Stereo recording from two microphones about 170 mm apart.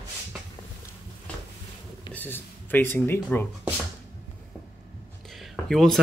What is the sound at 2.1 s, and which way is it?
Speech, 10° left (ahead or behind).